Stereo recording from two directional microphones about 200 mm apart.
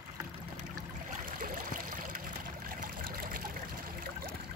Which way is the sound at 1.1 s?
45° right (ahead or behind).